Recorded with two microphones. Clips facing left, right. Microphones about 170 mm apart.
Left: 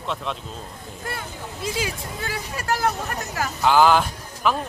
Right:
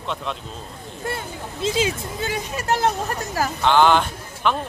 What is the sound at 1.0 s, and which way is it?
Speech, 25° right (ahead or behind).